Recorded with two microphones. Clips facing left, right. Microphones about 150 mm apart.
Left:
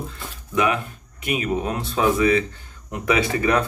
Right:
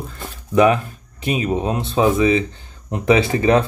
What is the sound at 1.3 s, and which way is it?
Speech, 25° right (ahead or behind).